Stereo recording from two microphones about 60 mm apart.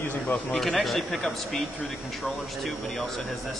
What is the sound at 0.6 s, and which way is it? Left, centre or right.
Speech, centre.